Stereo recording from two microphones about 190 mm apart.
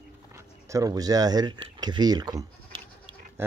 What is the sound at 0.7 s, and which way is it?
Speech, 20° right (ahead or behind).